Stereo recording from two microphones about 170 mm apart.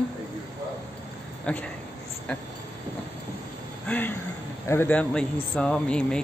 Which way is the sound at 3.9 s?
10° left (ahead or behind).